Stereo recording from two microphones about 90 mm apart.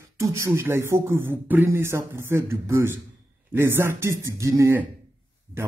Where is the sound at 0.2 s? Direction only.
35° right (ahead or behind).